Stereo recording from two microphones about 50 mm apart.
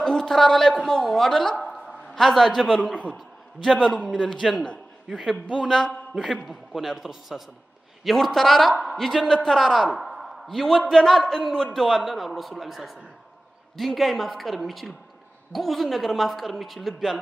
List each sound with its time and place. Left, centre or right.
0.0 s a man's voice: centre
1.6 s a sound: centre
4.0 s a man's voice: left
4.3 s a woman's voice: centre
6.4 s a man's voice: centre
9.8 s a sound: centre
10.9 s a man's voice: centre